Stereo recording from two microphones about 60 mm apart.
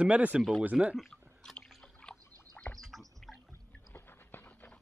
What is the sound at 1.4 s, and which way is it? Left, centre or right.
Drip, centre.